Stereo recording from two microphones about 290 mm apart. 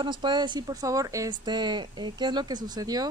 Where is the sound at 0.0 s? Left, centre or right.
Centre.